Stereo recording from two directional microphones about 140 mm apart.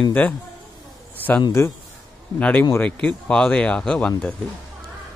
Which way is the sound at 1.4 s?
20° left (ahead or behind).